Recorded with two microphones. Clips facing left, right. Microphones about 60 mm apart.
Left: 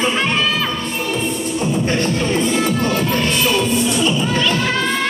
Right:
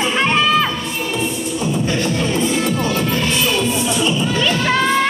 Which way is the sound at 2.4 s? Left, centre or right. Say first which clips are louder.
Left 1 dB; centre.